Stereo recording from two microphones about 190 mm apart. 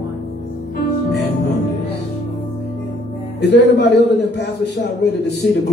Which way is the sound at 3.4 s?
65° left (ahead or behind).